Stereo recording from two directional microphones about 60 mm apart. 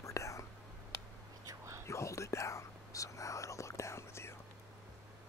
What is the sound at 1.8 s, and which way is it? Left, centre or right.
Whispering, left.